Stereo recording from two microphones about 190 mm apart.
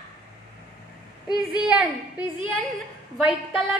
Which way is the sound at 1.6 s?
5° right (ahead or behind).